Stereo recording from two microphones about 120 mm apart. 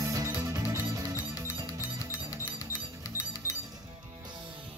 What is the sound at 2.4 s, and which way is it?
Music, 30° left (ahead or behind).